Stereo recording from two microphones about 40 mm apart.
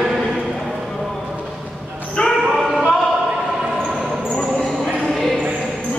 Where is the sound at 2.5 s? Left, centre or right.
Centre.